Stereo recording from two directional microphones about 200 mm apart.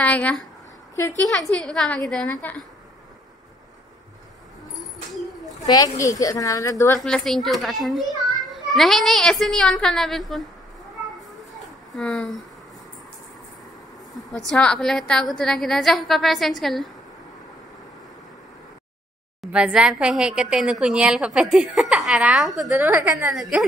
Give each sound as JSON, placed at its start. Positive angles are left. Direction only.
{"t": 0.0, "sound": "a woman's voice", "side_deg": 5}
{"t": 5.9, "sound": "speech", "side_deg": 15}
{"t": 7.0, "sound": "a woman's voice", "side_deg": 0}
{"t": 12.0, "sound": "a woman's voice", "side_deg": 5}
{"t": 14.5, "sound": "a woman's voice", "side_deg": 5}
{"t": 19.4, "sound": "a woman's voice", "side_deg": -5}